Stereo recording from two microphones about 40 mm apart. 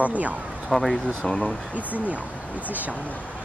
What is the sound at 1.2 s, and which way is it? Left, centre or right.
Speech, centre.